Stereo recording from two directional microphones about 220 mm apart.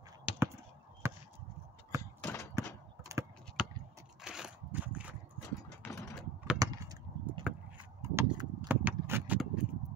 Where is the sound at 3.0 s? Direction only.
15° right (ahead or behind).